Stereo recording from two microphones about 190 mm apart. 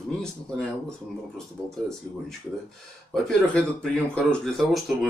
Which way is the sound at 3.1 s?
5° left (ahead or behind).